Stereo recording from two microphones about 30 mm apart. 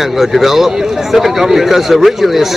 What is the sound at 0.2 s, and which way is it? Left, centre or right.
A man's voice, centre.